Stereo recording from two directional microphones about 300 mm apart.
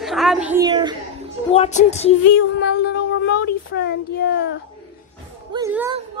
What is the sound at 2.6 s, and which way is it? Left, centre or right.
Child singing, left.